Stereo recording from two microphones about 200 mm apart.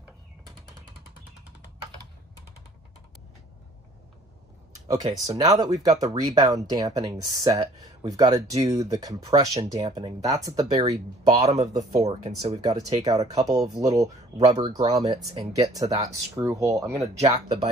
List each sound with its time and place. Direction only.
4.8 s speech: 20° right (ahead or behind)
11.4 s speech: 35° right (ahead or behind)
12.6 s speech: 20° right (ahead or behind)
14.4 s speech: 30° right (ahead or behind)
15.0 s speech: 20° right (ahead or behind)
17.0 s speech: 30° right (ahead or behind)